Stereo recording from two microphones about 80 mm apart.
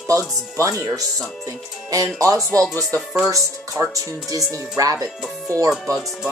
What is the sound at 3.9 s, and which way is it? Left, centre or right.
Speech, right.